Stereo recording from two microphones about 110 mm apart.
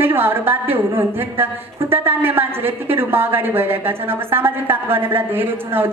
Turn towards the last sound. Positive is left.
turn(degrees=-20)  # may be behind; listen again after turning